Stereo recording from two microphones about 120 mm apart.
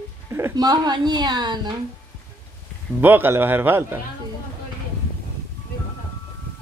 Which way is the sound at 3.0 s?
20° right (ahead or behind).